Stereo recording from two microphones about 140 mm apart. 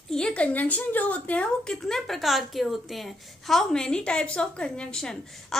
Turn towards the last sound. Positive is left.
turn(degrees=5)  # may be behind; listen again after turning